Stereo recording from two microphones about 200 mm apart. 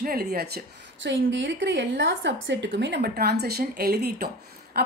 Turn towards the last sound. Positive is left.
turn(degrees=-50)  # may be behind; listen again after turning